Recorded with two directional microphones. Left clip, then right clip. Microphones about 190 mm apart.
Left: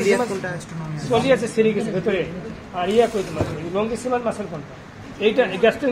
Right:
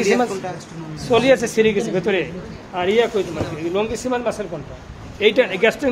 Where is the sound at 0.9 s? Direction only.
45° right (ahead or behind).